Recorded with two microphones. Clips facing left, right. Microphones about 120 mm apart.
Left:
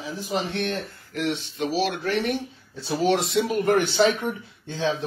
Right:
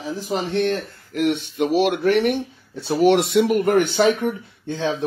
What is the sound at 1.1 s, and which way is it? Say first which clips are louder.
A man's voice: right 6 dB; 55° right (ahead or behind).